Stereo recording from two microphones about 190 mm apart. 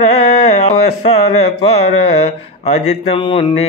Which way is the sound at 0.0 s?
35° left (ahead or behind).